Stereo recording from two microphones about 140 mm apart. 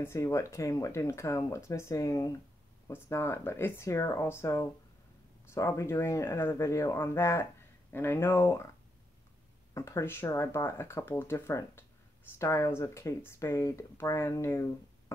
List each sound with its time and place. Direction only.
0.0 s speech: 20° left (ahead or behind)
9.8 s speech: 20° left (ahead or behind)